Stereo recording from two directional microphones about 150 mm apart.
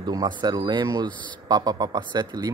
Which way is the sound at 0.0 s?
25° right (ahead or behind).